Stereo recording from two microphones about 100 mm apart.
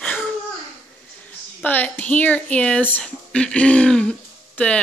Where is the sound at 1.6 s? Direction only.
15° left (ahead or behind).